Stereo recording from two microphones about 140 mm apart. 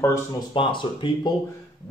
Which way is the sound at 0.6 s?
35° left (ahead or behind).